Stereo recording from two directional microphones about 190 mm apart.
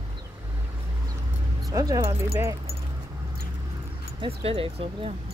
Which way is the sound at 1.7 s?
15° right (ahead or behind).